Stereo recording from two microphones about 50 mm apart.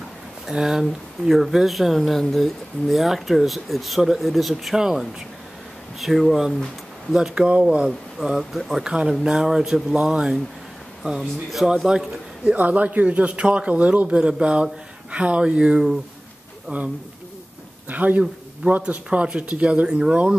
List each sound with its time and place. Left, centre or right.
0.5 s speech: centre
4.7 s speech: centre
5.9 s speech: centre
7.2 s speech: centre
8.4 s speech: centre
8.8 s speech: centre
12.5 s a man's voice: right
17.8 s a man's voice: right; by 20.2 s centre